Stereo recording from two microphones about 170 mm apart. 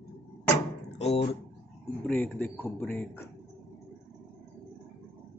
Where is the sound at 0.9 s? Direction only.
40° left (ahead or behind).